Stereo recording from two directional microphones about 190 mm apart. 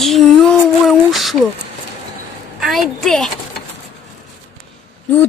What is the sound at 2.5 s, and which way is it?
Speech, centre (ahead or behind).